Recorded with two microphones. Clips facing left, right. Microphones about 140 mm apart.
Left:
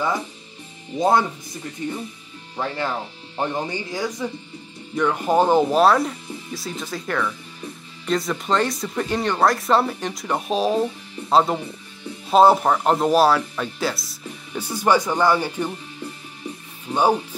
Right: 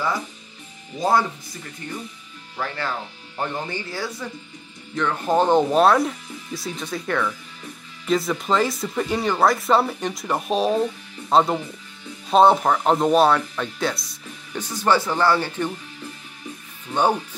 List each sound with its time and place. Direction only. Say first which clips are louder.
0.9 s speech: left 2 dB; 20° left (ahead or behind)
2.5 s speech: left 2 dB; 25° left (ahead or behind)
16.9 s a sound: left 1 dB; 25° left (ahead or behind)